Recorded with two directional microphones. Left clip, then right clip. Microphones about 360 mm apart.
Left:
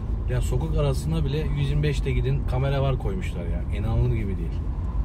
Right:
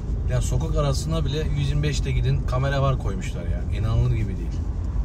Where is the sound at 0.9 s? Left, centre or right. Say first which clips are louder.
Right 1 dB; centre.